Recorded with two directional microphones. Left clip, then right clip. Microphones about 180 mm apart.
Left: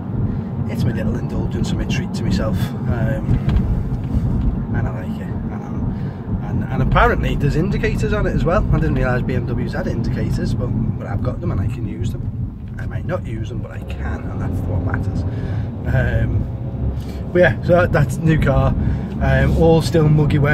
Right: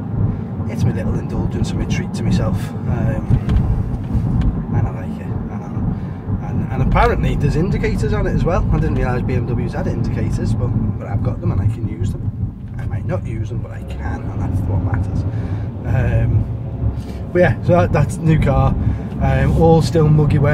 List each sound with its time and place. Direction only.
2.9 s speech: 15° left (ahead or behind)
6.7 s speech: 15° left (ahead or behind)
15.9 s speech: 15° left (ahead or behind)
17.3 s speech: 15° left (ahead or behind)